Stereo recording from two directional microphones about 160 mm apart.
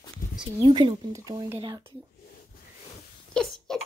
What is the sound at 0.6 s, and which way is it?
Speech, 30° right (ahead or behind).